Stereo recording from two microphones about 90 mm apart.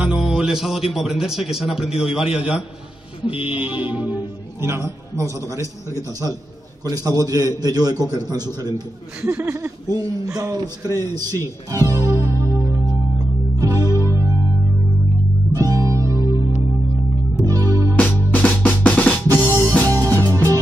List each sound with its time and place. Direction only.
0.0 s speech: 10° right (ahead or behind)
2.3 s music: 10° right (ahead or behind)
3.3 s a sound: 90° left
3.5 s music: 15° right (ahead or behind)
4.6 s a man's voice: 30° right (ahead or behind)
6.8 s a man's voice: 45° right (ahead or behind)
9.4 s speech: 20° right (ahead or behind)
9.8 s a man's voice: 45° right (ahead or behind)
12.3 s music: 35° right (ahead or behind)
15.5 s music: 40° right (ahead or behind)
17.5 s music: 35° right (ahead or behind)
17.9 s drum: 15° left (ahead or behind)
19.2 s drum: 40° right (ahead or behind)
19.9 s music: 35° right (ahead or behind)